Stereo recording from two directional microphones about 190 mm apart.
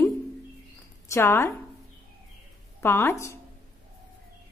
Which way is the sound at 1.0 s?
15° left (ahead or behind).